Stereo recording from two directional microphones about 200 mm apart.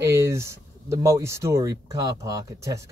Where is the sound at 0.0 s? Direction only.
15° right (ahead or behind).